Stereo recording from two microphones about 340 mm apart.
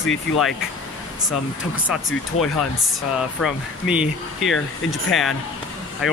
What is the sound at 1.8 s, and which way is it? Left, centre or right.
Speech, centre.